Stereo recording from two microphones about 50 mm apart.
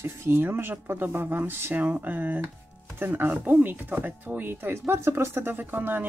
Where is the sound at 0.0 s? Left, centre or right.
Right.